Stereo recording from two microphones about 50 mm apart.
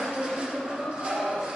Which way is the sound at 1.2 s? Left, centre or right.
Centre.